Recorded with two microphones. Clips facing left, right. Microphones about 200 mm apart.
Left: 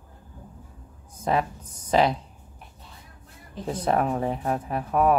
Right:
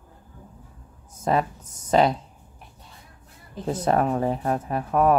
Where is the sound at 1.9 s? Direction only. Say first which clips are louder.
Right 2 dB; 5° left (ahead or behind).